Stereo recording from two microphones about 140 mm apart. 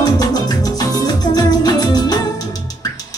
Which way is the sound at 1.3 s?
30° left (ahead or behind).